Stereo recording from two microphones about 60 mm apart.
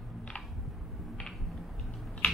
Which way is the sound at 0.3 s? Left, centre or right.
Centre.